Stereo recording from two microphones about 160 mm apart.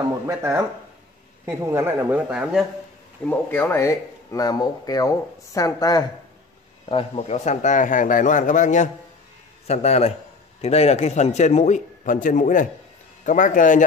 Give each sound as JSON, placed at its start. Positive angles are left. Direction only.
{"t": 0.3, "sound": "a woman's voice", "side_deg": -20}
{"t": 3.3, "sound": "speech", "side_deg": 10}
{"t": 6.9, "sound": "a man's voice", "side_deg": 35}